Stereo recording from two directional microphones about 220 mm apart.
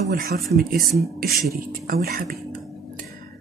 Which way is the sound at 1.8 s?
40° right (ahead or behind).